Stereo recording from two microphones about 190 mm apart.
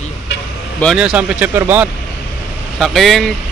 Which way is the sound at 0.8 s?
5° right (ahead or behind).